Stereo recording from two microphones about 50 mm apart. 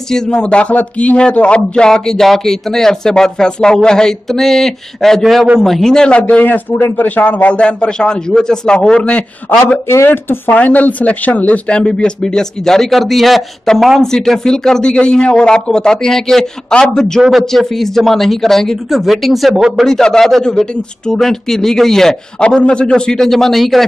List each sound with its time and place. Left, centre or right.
0.1 s speech: centre
6.2 s speech: left
6.7 s speech: left
7.2 s a man's voice: left
10.0 s speech: left
10.6 s speech: left; by 19.9 s centre
19.9 s speech: centre
22.4 s a man's voice: centre
23.1 s speech: centre